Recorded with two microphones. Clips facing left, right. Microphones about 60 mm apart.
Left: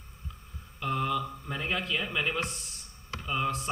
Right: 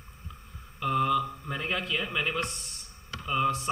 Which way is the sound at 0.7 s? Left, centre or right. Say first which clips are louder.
Right 4 dB; centre.